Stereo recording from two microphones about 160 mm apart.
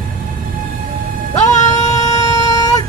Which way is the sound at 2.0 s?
25° left (ahead or behind).